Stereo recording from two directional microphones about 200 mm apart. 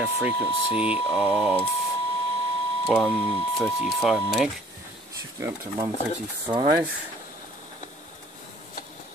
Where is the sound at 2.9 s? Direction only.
5° left (ahead or behind).